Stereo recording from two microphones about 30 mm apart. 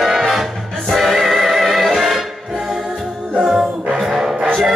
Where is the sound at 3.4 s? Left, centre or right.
Centre.